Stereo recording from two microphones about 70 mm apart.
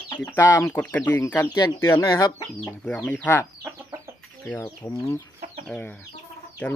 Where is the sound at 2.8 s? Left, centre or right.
Centre.